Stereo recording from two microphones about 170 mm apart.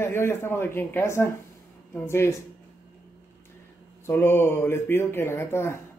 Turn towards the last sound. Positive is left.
turn(degrees=15)  # may be behind; listen again after turning